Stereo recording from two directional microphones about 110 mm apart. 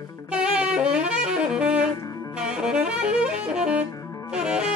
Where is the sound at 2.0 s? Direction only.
30° left (ahead or behind).